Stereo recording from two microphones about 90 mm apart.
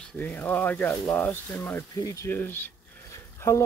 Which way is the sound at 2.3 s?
25° left (ahead or behind).